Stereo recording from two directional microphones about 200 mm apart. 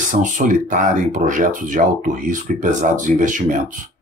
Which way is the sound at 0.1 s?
40° right (ahead or behind).